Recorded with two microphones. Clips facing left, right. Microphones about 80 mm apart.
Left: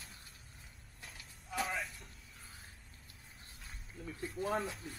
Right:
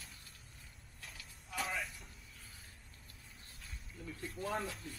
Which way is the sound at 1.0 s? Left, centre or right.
Centre.